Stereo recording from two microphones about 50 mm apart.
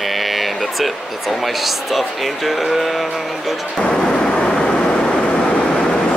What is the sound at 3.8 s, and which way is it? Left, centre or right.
Thunder, centre.